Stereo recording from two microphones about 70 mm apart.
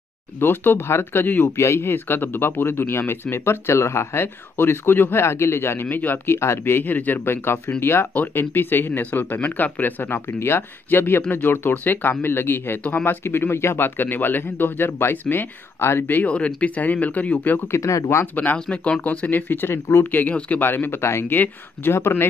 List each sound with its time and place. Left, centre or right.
0.4 s speech: left
1.6 s speech: left
16.3 s speech: centre
17.6 s speech: left
18.2 s speech: left
20.6 s speech: left